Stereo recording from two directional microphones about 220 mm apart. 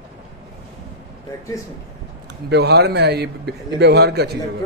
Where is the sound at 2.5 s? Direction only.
50° right (ahead or behind).